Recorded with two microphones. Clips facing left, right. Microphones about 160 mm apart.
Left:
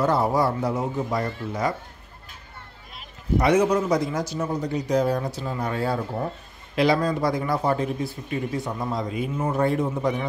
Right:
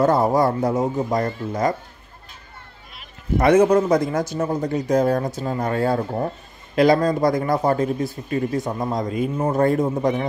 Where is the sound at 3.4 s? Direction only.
50° right (ahead or behind).